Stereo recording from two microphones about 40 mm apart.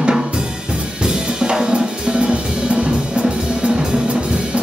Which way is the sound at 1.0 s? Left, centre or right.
Centre.